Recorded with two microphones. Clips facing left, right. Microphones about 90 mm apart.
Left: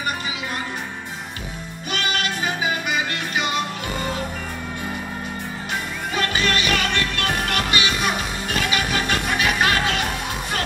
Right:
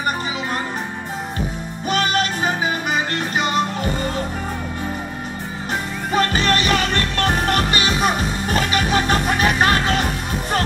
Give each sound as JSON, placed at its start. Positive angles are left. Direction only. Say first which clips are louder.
{"t": 1.9, "sound": "music", "louder": "right 5 dB", "side_deg": -40}
{"t": 6.1, "sound": "music", "louder": "right 5 dB", "side_deg": -40}